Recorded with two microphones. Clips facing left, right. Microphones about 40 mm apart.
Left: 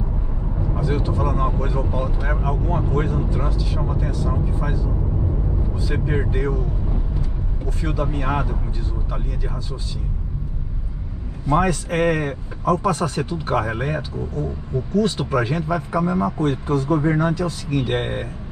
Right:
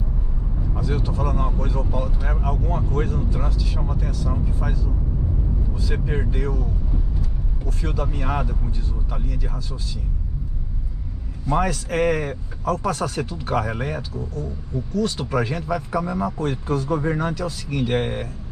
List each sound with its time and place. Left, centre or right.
0.7 s a man's voice: centre
6.3 s a man's voice: centre
7.8 s a man's voice: centre
11.4 s a man's voice: centre